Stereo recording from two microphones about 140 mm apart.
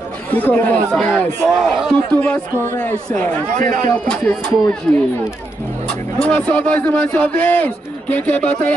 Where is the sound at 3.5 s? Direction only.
65° right (ahead or behind).